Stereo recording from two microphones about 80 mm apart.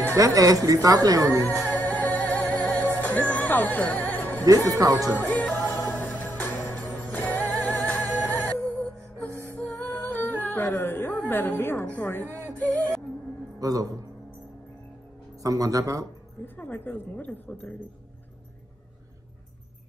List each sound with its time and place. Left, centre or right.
0.1 s a woman's voice: right
1.4 s music: left
4.6 s a woman's voice: right
5.1 s music: centre
13.6 s a man's voice: right
15.4 s a woman's voice: right
16.5 s a woman's voice: left